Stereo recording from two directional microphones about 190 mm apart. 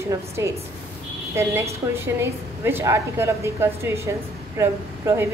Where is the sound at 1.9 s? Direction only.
15° right (ahead or behind).